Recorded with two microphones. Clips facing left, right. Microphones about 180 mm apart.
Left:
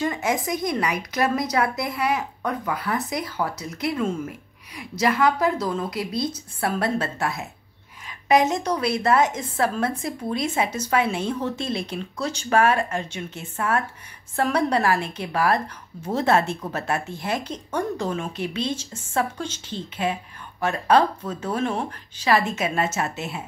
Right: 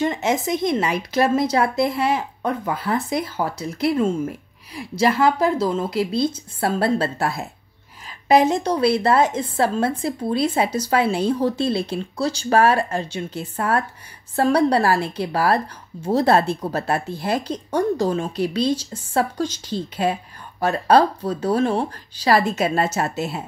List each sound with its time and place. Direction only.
0.0 s a woman's voice: 25° right (ahead or behind)